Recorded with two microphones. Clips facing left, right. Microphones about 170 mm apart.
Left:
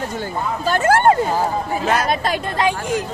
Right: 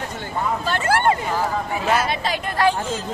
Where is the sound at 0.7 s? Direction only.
45° left (ahead or behind).